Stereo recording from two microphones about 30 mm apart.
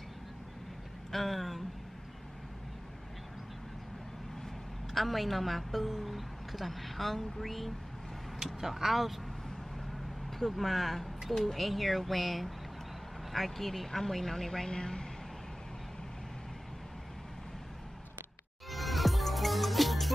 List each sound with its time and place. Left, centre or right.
1.1 s a woman's voice: centre
4.9 s a woman's voice: centre
8.4 s speech: centre
10.4 s a woman's voice: centre
14.7 s a woman's voice: left
18.7 s music: centre